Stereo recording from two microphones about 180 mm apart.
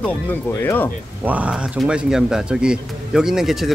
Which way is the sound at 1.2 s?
10° right (ahead or behind).